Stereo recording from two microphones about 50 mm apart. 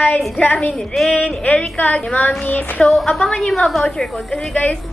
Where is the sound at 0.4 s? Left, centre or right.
Left.